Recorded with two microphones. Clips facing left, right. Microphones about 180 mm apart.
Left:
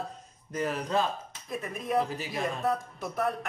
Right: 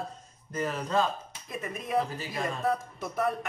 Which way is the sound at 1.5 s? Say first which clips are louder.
Left 1 dB; centre (ahead or behind).